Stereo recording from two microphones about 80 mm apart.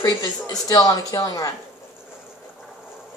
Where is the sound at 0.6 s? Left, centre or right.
Left.